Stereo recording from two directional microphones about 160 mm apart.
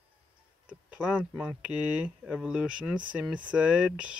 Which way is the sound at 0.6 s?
10° right (ahead or behind).